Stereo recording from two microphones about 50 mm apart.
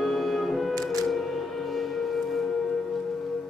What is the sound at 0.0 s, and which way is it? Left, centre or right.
Music, centre.